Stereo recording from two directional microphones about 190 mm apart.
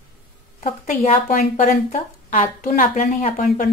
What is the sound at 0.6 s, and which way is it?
Speech, 35° left (ahead or behind).